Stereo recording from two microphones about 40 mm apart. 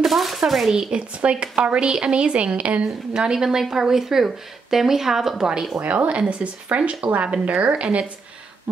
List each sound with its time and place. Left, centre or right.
0.0 s speech: centre
0.9 s a woman's voice: right
3.2 s speech: centre
5.8 s a woman's voice: right